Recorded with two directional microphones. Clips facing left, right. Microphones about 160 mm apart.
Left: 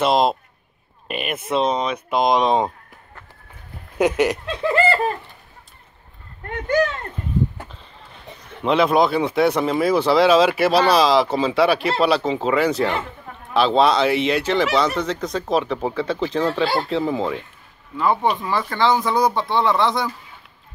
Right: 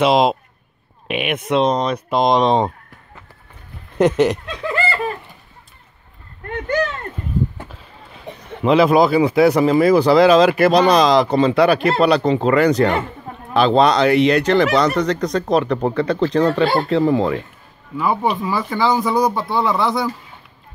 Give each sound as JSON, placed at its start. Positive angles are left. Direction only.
{"t": 0.0, "sound": "speech", "side_deg": 0}
{"t": 4.0, "sound": "speech", "side_deg": 10}
{"t": 4.6, "sound": "bird", "side_deg": 35}
{"t": 7.5, "sound": "a sound", "side_deg": 0}
{"t": 8.6, "sound": "speech", "side_deg": 0}